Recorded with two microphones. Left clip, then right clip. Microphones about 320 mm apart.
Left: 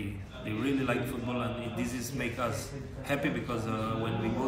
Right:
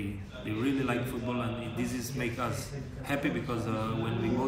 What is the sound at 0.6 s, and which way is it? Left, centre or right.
A man's voice, centre.